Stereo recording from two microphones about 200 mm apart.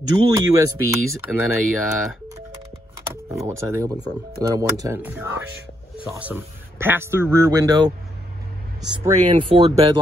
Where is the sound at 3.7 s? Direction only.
15° right (ahead or behind).